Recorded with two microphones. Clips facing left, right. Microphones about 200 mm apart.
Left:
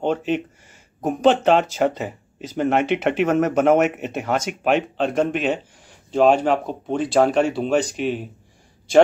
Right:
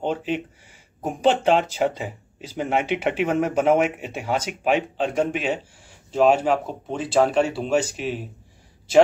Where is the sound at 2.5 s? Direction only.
55° left (ahead or behind).